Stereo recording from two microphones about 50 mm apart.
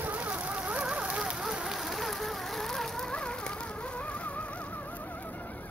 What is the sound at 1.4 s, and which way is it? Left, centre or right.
Rain on surface, centre.